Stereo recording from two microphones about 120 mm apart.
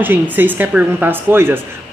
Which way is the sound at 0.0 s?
15° right (ahead or behind).